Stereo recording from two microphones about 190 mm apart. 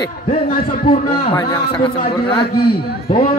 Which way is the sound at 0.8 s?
30° left (ahead or behind).